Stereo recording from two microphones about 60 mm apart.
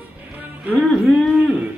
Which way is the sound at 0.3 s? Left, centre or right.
Right.